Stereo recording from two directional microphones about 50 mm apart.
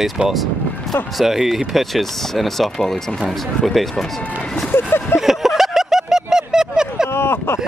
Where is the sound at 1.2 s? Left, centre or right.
Centre.